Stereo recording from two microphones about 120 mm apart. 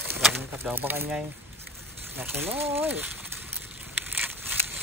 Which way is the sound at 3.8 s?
15° right (ahead or behind).